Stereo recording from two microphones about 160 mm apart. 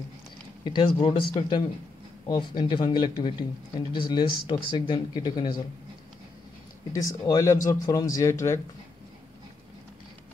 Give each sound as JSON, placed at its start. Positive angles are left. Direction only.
{"t": 0.7, "sound": "speech", "side_deg": 30}
{"t": 6.9, "sound": "speech", "side_deg": 20}